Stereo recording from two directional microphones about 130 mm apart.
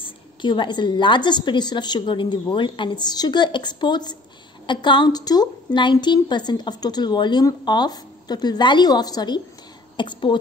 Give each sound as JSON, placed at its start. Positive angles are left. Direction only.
{"t": 0.0, "sound": "a woman's voice", "side_deg": 35}